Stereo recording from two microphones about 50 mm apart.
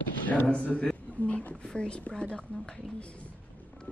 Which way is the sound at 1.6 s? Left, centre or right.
Centre.